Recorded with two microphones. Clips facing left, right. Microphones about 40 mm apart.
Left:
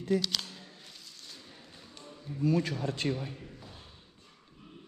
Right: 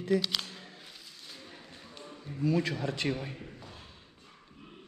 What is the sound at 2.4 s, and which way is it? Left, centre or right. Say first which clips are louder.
Speech: even; right.